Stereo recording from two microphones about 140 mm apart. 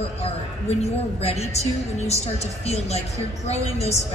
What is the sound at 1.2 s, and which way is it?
A woman's voice, 50° left (ahead or behind).